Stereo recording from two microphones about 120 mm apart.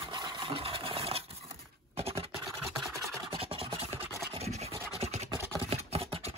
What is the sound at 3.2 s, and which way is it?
Rub, 50° right (ahead or behind).